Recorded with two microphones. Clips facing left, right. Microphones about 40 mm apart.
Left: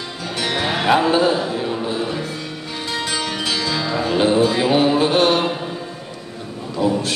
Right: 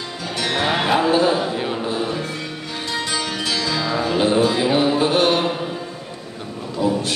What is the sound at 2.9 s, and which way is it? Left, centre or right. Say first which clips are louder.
Music: left 1 dB; centre.